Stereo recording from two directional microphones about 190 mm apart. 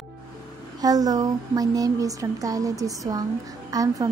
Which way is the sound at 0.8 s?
20° right (ahead or behind).